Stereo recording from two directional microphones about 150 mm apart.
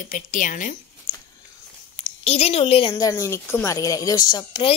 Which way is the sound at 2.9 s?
20° left (ahead or behind).